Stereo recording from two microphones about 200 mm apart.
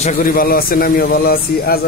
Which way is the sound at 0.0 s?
45° left (ahead or behind).